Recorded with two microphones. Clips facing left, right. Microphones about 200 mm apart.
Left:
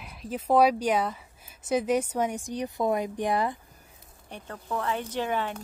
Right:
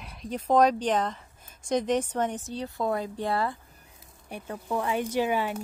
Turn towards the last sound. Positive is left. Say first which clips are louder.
# right 3 dB
turn(degrees=-10)  # may be behind; listen again after turning